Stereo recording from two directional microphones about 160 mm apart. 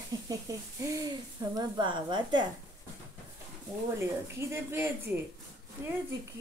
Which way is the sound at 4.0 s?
15° right (ahead or behind).